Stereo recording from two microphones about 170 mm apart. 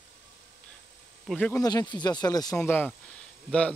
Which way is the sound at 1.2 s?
5° left (ahead or behind).